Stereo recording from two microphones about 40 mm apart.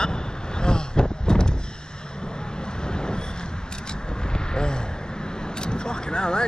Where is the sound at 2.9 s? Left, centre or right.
Left.